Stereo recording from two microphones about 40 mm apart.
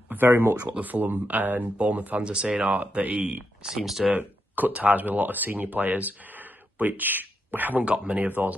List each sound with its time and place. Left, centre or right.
0.1 s speech: right
0.7 s speech: right
1.8 s speech: right
3.6 s speech: centre
4.1 s speech: right
7.8 s speech: right
8.3 s speech: right